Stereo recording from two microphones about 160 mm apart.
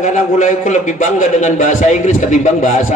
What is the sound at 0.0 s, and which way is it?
A man's voice, 50° left (ahead or behind).